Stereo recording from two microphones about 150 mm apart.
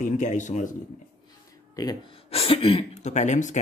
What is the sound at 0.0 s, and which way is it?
Speech, 55° left (ahead or behind).